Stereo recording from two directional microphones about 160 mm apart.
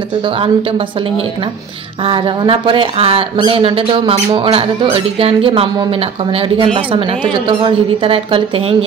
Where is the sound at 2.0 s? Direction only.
35° right (ahead or behind).